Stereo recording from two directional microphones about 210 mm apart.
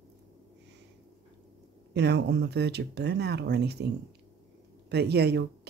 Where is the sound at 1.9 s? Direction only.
55° right (ahead or behind).